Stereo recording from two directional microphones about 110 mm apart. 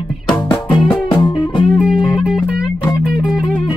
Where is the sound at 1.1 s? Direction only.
45° left (ahead or behind).